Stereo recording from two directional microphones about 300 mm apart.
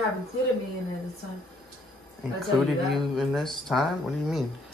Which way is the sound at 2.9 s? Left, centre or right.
Centre.